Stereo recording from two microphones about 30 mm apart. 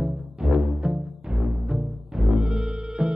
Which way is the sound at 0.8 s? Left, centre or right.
Right.